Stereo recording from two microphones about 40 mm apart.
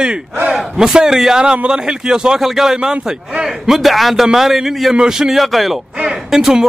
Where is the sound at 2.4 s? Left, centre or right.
Centre.